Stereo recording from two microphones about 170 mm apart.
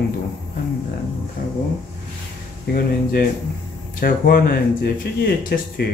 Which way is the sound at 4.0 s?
60° left (ahead or behind).